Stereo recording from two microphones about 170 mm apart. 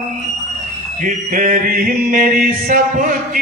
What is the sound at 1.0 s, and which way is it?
Mantra, 50° right (ahead or behind).